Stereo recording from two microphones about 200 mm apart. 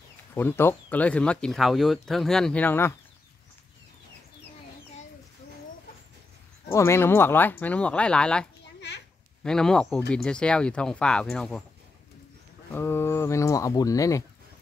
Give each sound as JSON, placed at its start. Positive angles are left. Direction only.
{"t": 0.3, "sound": "speech", "side_deg": 10}
{"t": 6.7, "sound": "speech", "side_deg": 15}
{"t": 12.7, "sound": "speech", "side_deg": 10}